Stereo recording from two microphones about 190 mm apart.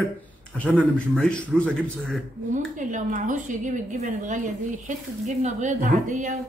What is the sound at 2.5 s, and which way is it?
A woman's voice, 40° right (ahead or behind).